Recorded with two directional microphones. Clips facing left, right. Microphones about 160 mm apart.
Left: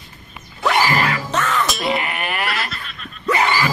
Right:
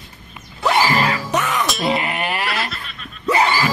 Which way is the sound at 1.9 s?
30° right (ahead or behind).